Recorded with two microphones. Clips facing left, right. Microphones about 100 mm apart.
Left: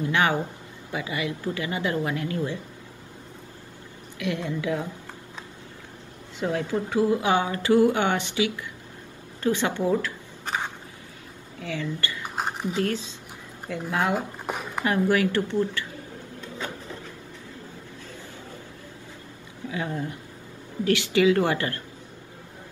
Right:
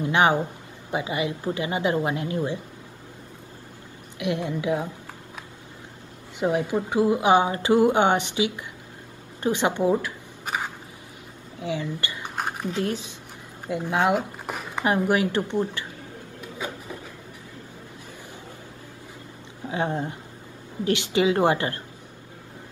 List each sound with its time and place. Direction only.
0.0 s speech: 20° right (ahead or behind)
4.2 s speech: 20° right (ahead or behind)
6.4 s speech: 20° right (ahead or behind)
9.4 s a sound: 20° right (ahead or behind)
11.6 s a woman's voice: 20° right (ahead or behind)
14.4 s a sound: centre (ahead or behind)
14.8 s speech: 20° right (ahead or behind)
16.3 s a sound: 15° right (ahead or behind)
19.7 s speech: 30° right (ahead or behind)